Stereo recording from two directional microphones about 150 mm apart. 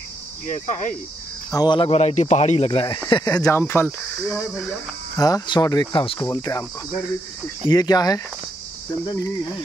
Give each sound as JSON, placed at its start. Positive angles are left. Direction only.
{"t": 0.5, "sound": "speech", "side_deg": 55}
{"t": 1.5, "sound": "speech", "side_deg": 25}
{"t": 1.9, "sound": "speech", "side_deg": 45}
{"t": 3.1, "sound": "speech", "side_deg": 25}
{"t": 4.2, "sound": "speech", "side_deg": 0}
{"t": 5.1, "sound": "speech", "side_deg": 25}
{"t": 7.7, "sound": "speech", "side_deg": 25}